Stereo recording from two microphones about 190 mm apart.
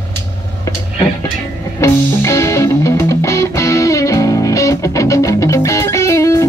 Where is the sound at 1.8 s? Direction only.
15° left (ahead or behind).